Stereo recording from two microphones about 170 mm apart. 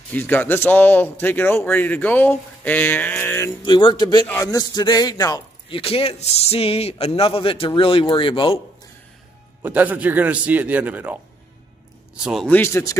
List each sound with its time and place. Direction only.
0.1 s speech: 10° left (ahead or behind)
3.6 s music: 25° left (ahead or behind)
5.7 s a man's voice: 35° left (ahead or behind)
9.6 s speech: 10° right (ahead or behind)
12.2 s a man's voice: 5° right (ahead or behind)
12.4 s speech: 10° left (ahead or behind)